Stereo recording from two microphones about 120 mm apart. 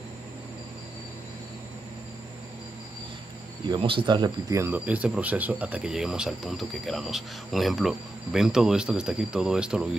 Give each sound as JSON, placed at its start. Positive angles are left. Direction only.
{"t": 3.6, "sound": "speech", "side_deg": -40}
{"t": 4.6, "sound": "speech", "side_deg": -15}